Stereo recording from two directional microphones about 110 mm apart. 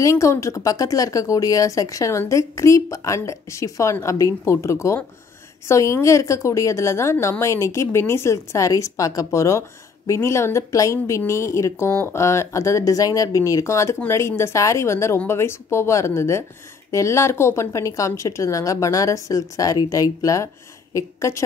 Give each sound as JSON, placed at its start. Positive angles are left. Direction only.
{"t": 0.0, "sound": "a woman's voice", "side_deg": 25}